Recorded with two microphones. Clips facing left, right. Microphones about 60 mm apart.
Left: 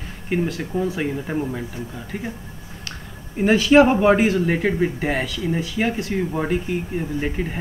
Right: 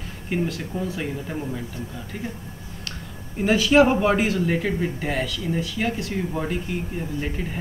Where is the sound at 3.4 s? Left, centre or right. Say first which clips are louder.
Left 3 dB; centre.